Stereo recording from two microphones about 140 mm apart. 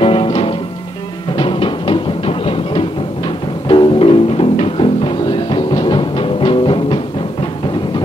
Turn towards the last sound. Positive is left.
turn(degrees=35)  # may be behind; listen again after turning